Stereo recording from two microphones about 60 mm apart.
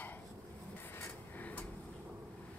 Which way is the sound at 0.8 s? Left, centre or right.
Left.